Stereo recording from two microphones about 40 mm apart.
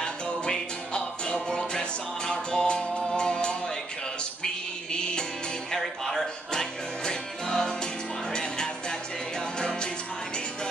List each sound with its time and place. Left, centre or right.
0.0 s music: left
4.9 s music: left
5.8 s music: centre